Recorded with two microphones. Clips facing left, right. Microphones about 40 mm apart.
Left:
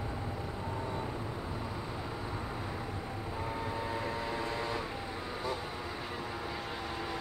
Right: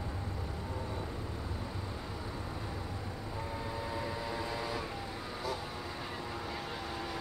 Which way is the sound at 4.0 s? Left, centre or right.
Centre.